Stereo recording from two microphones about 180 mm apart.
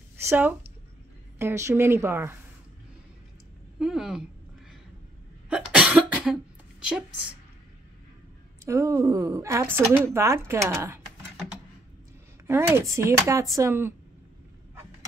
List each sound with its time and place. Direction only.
0.2 s a woman's voice: 10° right (ahead or behind)
3.8 s speech: centre (ahead or behind)
5.5 s cough: 5° right (ahead or behind)
8.6 s a woman's voice: 15° right (ahead or behind)
12.4 s a woman's voice: 15° right (ahead or behind)